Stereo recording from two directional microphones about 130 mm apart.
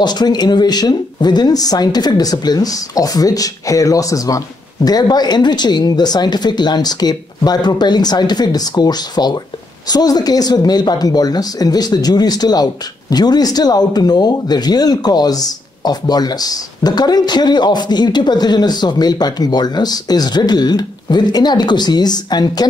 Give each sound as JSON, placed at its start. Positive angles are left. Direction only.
{"t": 0.0, "sound": "speech", "side_deg": 35}